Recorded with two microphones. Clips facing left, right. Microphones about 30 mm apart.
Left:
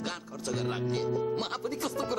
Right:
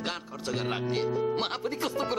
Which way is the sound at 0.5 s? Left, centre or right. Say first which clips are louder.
Right 1 dB; right.